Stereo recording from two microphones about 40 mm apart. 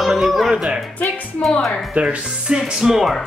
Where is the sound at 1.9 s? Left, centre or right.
Right.